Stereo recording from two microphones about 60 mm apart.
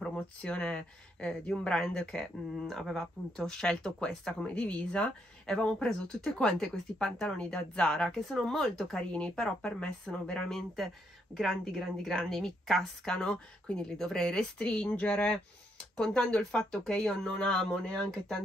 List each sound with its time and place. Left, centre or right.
0.0 s a woman's voice: centre
14.7 s speech: left